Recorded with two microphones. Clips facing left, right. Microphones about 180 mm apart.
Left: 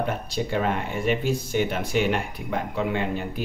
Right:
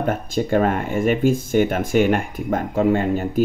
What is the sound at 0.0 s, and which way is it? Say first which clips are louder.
Speech: right 5 dB; 50° right (ahead or behind).